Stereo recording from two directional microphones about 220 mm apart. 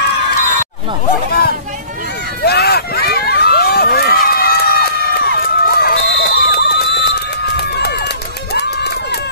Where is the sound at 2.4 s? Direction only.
45° left (ahead or behind).